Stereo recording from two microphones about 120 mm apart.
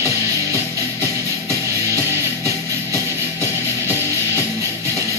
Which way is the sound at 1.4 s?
25° right (ahead or behind).